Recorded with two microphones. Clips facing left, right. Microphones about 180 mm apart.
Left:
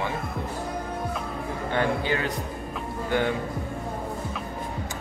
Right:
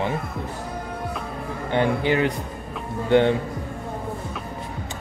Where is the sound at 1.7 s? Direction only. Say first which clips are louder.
Right 5 dB; 20° right (ahead or behind).